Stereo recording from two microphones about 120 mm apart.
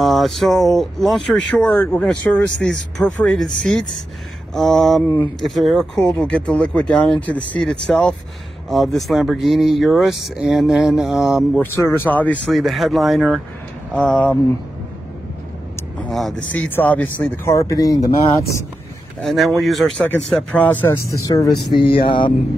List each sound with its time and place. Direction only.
0.0 s speech: centre (ahead or behind)
1.7 s speech: 20° left (ahead or behind); by 11.6 s 5° right (ahead or behind)
11.6 s speech: 20° left (ahead or behind)
12.4 s speech: centre (ahead or behind)
16.1 s speech: centre (ahead or behind)
17.6 s speech: 30° left (ahead or behind)
19.2 s speech: centre (ahead or behind); by 21.0 s 15° left (ahead or behind)
21.9 s speech: 45° left (ahead or behind)